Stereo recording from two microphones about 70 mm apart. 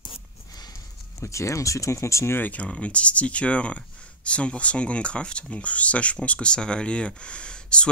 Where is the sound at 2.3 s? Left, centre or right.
Left.